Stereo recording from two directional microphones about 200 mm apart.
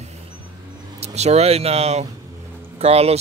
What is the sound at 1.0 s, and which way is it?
Speech, 30° right (ahead or behind).